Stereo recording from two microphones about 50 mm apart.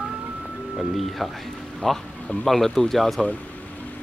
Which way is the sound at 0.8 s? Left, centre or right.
Centre.